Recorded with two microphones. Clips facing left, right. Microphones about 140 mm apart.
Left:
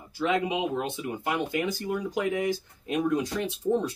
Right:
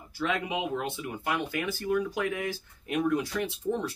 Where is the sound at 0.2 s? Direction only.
20° left (ahead or behind).